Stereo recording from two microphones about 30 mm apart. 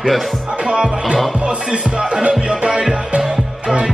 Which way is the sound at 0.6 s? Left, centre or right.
Right.